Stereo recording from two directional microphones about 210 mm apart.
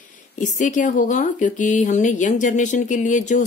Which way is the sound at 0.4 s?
35° left (ahead or behind).